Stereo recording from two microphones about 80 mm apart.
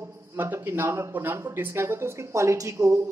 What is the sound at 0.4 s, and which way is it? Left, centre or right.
Speech, right.